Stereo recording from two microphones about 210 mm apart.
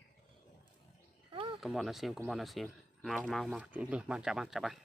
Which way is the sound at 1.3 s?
25° right (ahead or behind).